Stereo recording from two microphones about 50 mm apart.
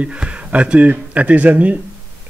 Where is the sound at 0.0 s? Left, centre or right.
Right.